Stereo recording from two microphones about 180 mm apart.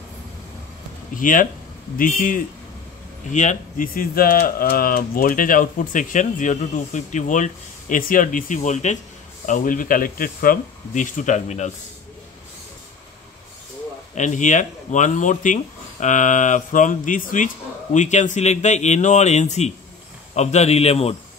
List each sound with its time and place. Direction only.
1.1 s speech: 50° left (ahead or behind)
14.1 s speech: 40° left (ahead or behind)